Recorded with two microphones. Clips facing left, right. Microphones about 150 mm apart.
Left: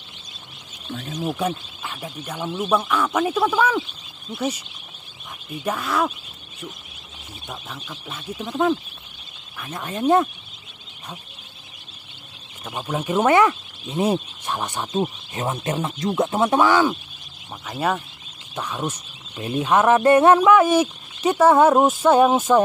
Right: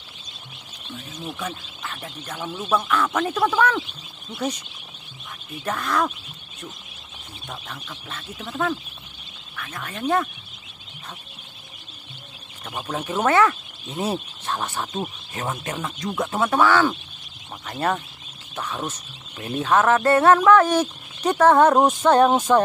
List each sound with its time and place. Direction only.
1.2 s speech: 35° left (ahead or behind)
1.8 s speech: 10° left (ahead or behind)
7.4 s speech: 10° left (ahead or behind)
12.6 s speech: 5° left (ahead or behind)
17.6 s speech: 5° left (ahead or behind)